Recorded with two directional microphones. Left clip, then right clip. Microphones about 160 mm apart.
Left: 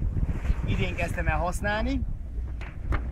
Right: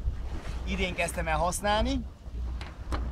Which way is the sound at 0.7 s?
Centre (ahead or behind).